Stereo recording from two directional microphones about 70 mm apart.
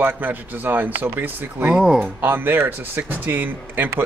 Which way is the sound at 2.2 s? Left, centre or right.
Right.